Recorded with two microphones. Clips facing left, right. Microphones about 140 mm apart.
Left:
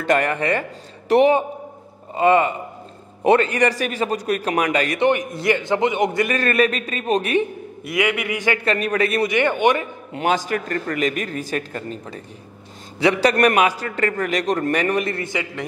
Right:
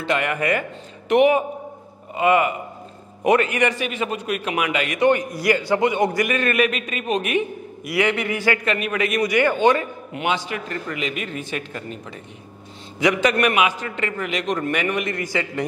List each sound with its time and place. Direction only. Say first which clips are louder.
0.0 s speech: left 4 dB; 45° left (ahead or behind)
0.3 s a man's voice: left 1 dB; 30° left (ahead or behind)
5.0 s a man's voice: right 2 dB; 20° left (ahead or behind)
6.2 s a man's voice: left 1 dB; 35° left (ahead or behind)
7.9 s speech: even; 10° left (ahead or behind)
8.5 s a man's voice: left 3 dB; 35° left (ahead or behind)
10.1 s a man's voice: left 4 dB; 40° left (ahead or behind)